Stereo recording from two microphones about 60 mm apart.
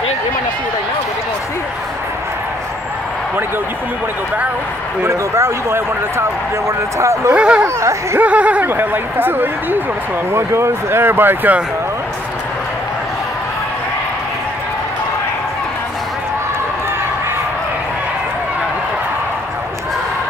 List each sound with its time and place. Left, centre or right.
5.0 s speech: right
7.3 s speech: centre
7.6 s speech: right
8.2 s speech: right
8.6 s speech: right
10.3 s speech: right